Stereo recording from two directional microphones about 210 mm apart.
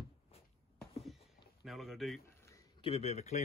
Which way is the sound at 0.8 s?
Centre (ahead or behind).